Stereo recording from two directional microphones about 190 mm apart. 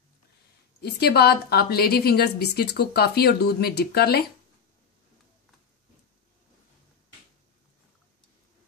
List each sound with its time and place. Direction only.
0.7 s a woman's voice: 60° left (ahead or behind)